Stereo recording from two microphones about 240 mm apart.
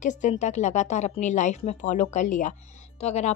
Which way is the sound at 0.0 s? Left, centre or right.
Left.